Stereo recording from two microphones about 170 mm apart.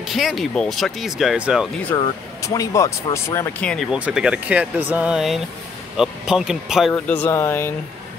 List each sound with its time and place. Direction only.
0.0 s speech: centre (ahead or behind)
2.0 s speech: 20° left (ahead or behind)
3.9 s speech: 5° right (ahead or behind)
6.9 s speech: 10° left (ahead or behind)